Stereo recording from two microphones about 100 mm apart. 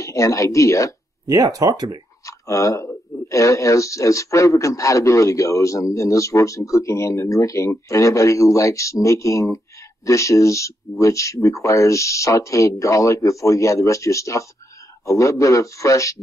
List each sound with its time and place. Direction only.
0.0 s speech: 30° left (ahead or behind)
1.2 s speech: 40° right (ahead or behind)
2.2 s speech: 30° left (ahead or behind)